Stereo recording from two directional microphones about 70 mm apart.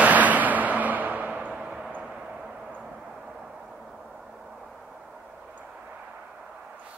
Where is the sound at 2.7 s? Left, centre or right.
Centre.